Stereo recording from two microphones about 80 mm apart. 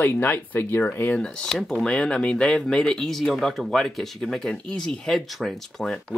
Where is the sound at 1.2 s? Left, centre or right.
Centre.